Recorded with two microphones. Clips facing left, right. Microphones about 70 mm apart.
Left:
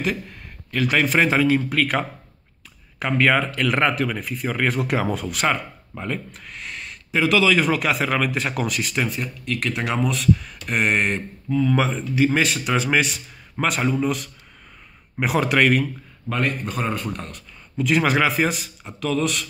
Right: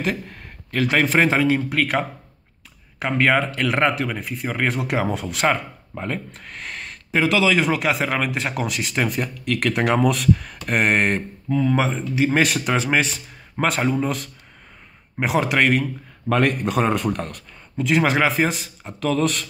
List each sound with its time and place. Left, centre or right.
0.0 s speech: right
1.8 s speech: centre; by 7.2 s right
7.2 s speech: right
8.9 s speech: right
11.7 s speech: right
12.4 s speech: right
12.7 s speech: right
15.1 s speech: right
16.3 s speech: right
17.7 s speech: right